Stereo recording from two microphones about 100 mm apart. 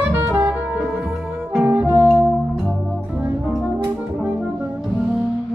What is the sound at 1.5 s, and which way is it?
Music, 10° right (ahead or behind).